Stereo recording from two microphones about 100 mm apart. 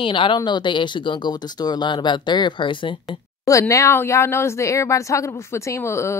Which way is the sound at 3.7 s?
25° left (ahead or behind).